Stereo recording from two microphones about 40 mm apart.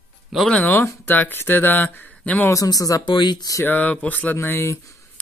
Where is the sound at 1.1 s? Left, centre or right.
Left.